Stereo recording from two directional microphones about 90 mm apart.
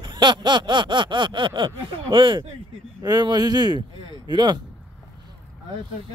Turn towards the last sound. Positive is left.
turn(degrees=-55)  # may be behind; listen again after turning